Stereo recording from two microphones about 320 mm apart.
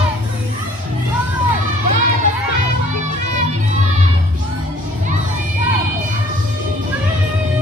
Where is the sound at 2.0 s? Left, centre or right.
Right.